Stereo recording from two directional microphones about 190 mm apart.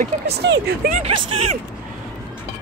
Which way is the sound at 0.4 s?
60° right (ahead or behind).